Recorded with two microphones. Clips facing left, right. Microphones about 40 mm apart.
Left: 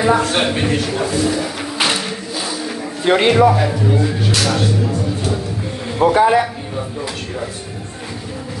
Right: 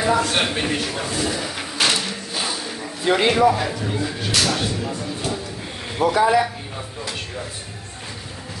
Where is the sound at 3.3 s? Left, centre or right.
Centre.